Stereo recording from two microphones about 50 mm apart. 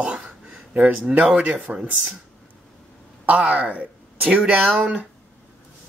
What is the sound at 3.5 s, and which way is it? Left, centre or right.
Speech, right.